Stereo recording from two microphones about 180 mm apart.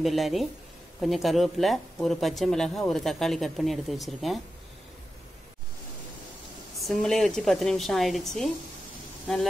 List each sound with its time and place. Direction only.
0.0 s speech: centre (ahead or behind)
6.8 s speech: centre (ahead or behind)